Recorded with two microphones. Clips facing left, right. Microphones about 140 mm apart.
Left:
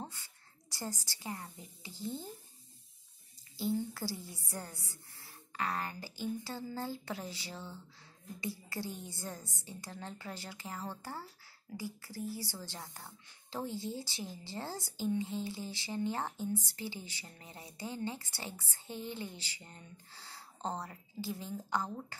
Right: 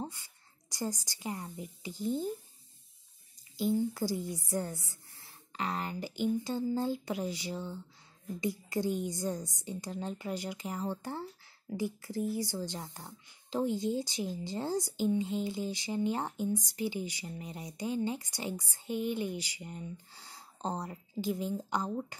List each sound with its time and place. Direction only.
0.7 s speech: 15° right (ahead or behind)
3.5 s a woman's voice: 15° right (ahead or behind)